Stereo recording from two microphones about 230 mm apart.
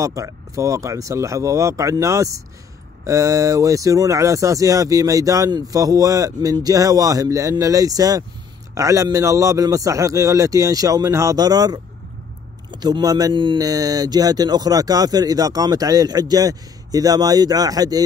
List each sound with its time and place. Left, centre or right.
0.0 s speech: centre